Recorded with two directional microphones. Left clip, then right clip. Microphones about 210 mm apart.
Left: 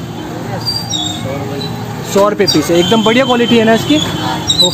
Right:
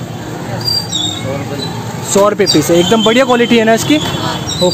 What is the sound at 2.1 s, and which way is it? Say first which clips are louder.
Speech: right 1 dB; 10° right (ahead or behind).